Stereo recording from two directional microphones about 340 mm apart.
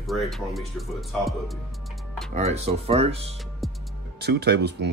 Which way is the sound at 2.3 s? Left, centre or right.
Centre.